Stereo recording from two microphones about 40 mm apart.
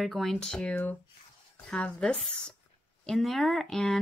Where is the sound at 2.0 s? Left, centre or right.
Centre.